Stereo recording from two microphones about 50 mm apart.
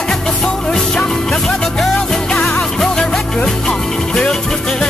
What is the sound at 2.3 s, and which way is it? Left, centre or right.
Music, centre.